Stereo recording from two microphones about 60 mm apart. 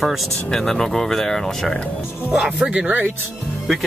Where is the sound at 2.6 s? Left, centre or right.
Centre.